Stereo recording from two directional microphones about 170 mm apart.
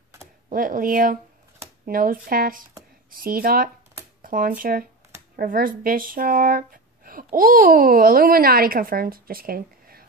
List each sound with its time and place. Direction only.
0.5 s speech: 55° right (ahead or behind)